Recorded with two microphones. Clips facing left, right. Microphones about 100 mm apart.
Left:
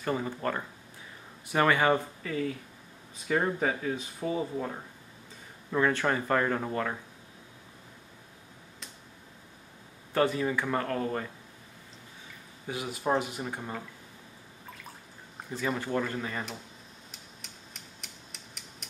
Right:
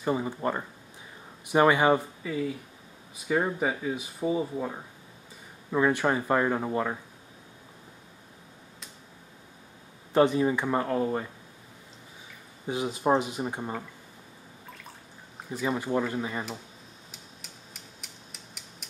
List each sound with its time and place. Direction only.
0.0 s speech: 15° right (ahead or behind)
10.1 s speech: 20° right (ahead or behind)
12.6 s speech: 25° right (ahead or behind)
15.5 s speech: 15° right (ahead or behind)
17.1 s a sound: centre (ahead or behind)